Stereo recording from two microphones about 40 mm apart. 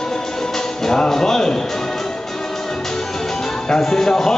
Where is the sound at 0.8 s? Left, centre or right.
Centre.